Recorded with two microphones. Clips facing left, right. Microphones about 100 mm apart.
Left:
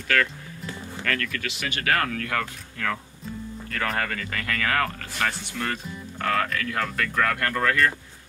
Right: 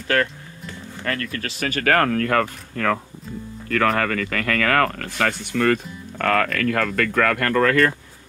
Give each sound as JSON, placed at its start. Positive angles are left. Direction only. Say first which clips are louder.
{"t": 1.0, "sound": "speech", "louder": "right 2 dB", "side_deg": -35}
{"t": 3.7, "sound": "speech", "louder": "right 8 dB", "side_deg": -90}